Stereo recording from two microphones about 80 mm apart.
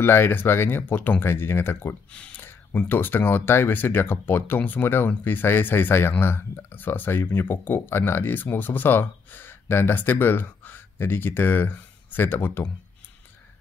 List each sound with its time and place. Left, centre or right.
0.0 s speech: left
2.1 s speech: centre